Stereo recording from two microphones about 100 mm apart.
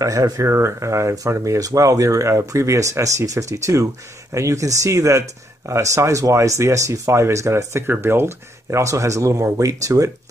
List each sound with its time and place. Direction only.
0.0 s speech: 35° right (ahead or behind)